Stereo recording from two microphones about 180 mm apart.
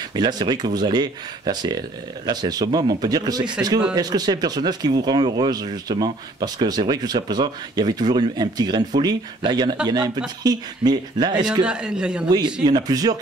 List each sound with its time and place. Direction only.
0.1 s speech: 25° right (ahead or behind)
11.6 s a man's voice: 5° right (ahead or behind)
12.3 s speech: 25° right (ahead or behind)